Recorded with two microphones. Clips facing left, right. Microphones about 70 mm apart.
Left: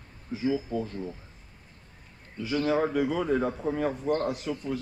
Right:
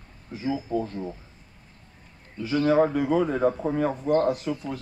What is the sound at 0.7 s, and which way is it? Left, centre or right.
Speech, right.